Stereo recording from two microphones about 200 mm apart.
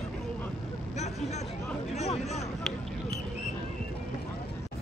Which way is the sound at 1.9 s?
35° left (ahead or behind).